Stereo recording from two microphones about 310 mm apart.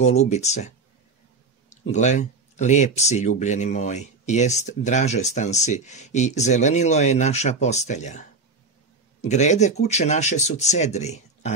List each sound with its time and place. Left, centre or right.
0.0 s speech: left